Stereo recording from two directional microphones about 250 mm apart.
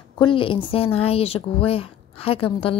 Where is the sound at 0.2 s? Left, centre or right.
Left.